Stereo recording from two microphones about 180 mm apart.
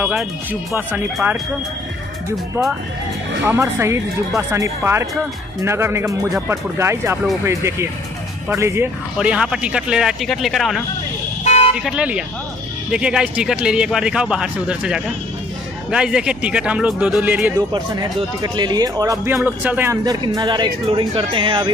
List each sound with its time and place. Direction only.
0.0 s speech: 5° right (ahead or behind)
3.4 s speech: 15° right (ahead or behind)
11.4 s vehicle: 35° left (ahead or behind)
11.7 s speech: 5° right (ahead or behind)
17.6 s speech: 20° right (ahead or behind)